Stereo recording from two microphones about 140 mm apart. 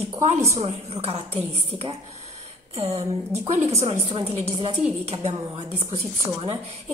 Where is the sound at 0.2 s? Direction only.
55° right (ahead or behind).